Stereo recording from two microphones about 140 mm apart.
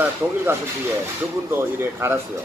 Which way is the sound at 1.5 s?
15° right (ahead or behind).